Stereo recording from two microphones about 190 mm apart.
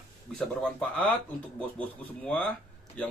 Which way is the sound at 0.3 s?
5° left (ahead or behind).